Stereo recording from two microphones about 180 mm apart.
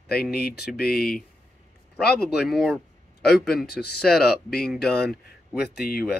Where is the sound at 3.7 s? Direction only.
60° left (ahead or behind).